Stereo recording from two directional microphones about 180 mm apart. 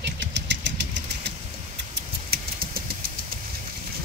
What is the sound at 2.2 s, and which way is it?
Vehicle, 55° right (ahead or behind).